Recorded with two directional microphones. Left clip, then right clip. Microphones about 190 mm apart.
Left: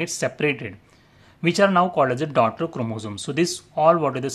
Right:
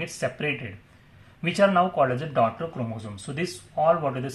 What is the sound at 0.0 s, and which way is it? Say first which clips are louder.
Speech: left 5 dB; 40° left (ahead or behind).